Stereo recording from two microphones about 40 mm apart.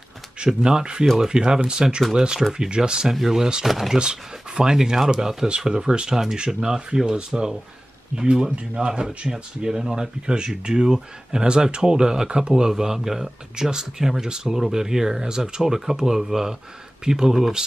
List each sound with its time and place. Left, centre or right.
0.4 s speech: centre
3.1 s speech: centre
3.9 s speech: centre
9.3 s speech: centre